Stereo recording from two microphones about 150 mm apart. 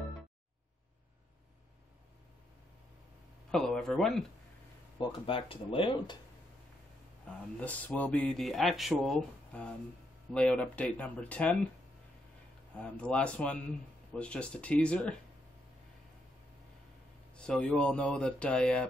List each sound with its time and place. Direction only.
3.5 s speech: 5° left (ahead or behind)
5.0 s speech: 35° left (ahead or behind)
7.6 s speech: 10° left (ahead or behind)
12.7 s speech: 10° left (ahead or behind)
17.3 s speech: 5° left (ahead or behind)